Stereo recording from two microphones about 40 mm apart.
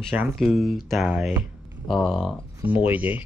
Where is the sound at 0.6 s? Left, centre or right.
Centre.